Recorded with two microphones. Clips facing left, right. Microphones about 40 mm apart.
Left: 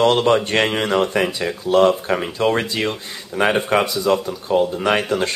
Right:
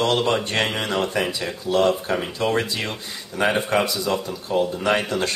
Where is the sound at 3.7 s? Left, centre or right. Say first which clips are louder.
Left 4 dB; left.